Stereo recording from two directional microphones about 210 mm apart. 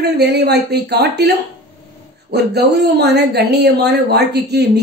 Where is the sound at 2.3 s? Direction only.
50° right (ahead or behind).